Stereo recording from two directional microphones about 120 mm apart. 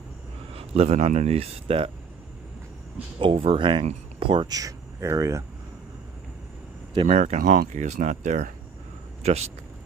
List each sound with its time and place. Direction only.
0.5 s speech: 55° right (ahead or behind)
3.2 s speech: 50° right (ahead or behind)
4.5 s speech: 30° right (ahead or behind)
7.1 s speech: 75° right (ahead or behind)
9.2 s speech: 65° right (ahead or behind)